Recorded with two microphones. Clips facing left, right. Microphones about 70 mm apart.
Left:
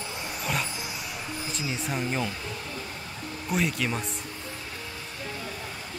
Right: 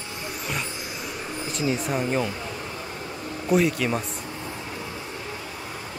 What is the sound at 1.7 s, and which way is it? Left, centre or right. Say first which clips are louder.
Speech: right 2 dB; centre.